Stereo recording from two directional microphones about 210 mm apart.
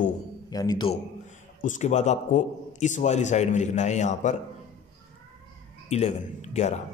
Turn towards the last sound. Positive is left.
turn(degrees=30)  # may be behind; listen again after turning